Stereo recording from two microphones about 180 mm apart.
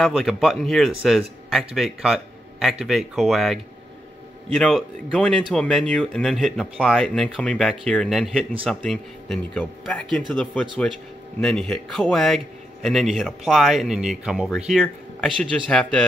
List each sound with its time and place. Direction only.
0.0 s speech: centre (ahead or behind)